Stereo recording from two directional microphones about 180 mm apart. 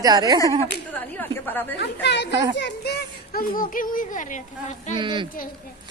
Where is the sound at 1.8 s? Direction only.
70° left (ahead or behind); by 4.9 s 40° left (ahead or behind).